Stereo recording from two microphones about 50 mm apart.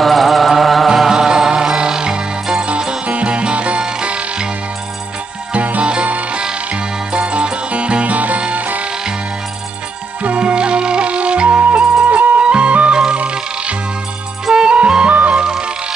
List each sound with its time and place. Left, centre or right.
0.0 s music: centre
5.5 s music: right
10.2 s music: right
15.4 s music: centre